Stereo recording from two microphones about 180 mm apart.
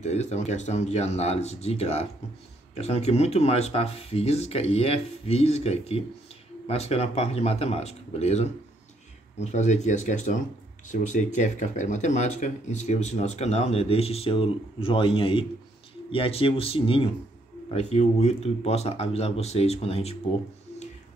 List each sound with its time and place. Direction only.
0.0 s speech: 40° left (ahead or behind)